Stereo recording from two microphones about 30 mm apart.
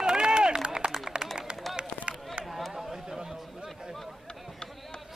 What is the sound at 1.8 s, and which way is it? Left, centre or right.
Run, right.